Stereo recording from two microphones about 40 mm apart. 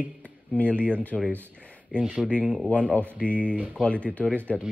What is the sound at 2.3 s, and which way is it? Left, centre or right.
Speech, left.